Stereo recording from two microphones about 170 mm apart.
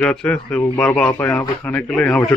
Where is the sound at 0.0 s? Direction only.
5° left (ahead or behind).